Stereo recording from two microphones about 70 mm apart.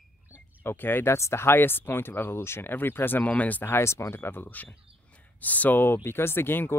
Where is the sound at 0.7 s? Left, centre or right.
Left.